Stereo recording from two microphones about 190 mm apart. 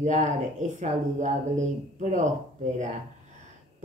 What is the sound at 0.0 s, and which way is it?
Speech, 40° right (ahead or behind).